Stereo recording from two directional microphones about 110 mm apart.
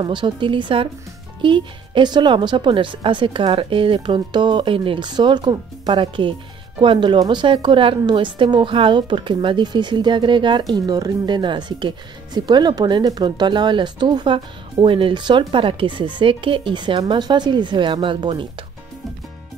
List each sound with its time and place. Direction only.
0.0 s speech: 45° right (ahead or behind)